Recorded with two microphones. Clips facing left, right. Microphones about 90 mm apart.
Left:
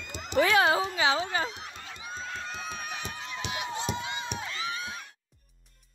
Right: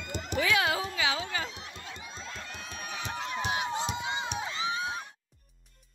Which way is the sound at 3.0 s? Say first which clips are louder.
Right 4 dB; 90° right.